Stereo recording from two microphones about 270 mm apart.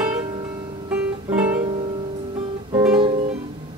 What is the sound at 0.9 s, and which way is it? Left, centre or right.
Music, centre.